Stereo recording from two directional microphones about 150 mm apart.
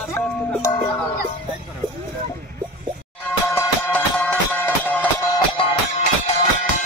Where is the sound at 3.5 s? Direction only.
15° left (ahead or behind).